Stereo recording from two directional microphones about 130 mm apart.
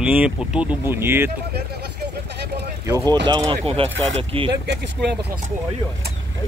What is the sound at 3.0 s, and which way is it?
Speech, 35° right (ahead or behind).